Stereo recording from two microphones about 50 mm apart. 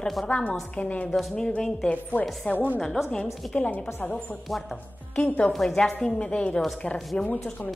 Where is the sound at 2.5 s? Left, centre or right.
Left.